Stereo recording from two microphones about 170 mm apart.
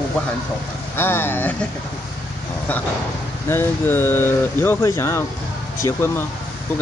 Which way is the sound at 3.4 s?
15° left (ahead or behind).